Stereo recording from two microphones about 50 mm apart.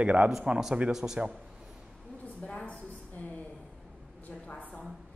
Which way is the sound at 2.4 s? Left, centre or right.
Left.